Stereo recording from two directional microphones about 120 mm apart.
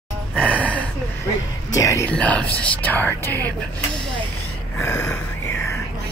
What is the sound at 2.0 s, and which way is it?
Speech, 10° left (ahead or behind).